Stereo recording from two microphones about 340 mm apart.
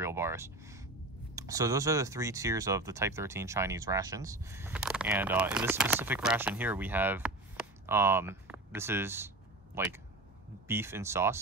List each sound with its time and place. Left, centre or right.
0.0 s speech: centre